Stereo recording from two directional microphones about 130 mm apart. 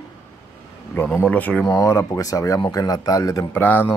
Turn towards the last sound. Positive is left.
turn(degrees=15)  # may be behind; listen again after turning